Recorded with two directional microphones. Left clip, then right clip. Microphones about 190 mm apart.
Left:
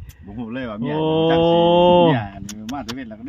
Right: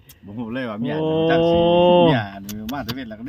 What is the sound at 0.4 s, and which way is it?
Speech, 30° right (ahead or behind).